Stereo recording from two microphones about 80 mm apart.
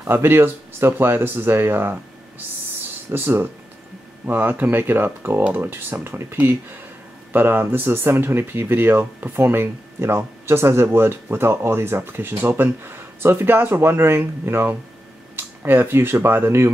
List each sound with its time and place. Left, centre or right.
0.0 s speech: right
3.1 s speech: right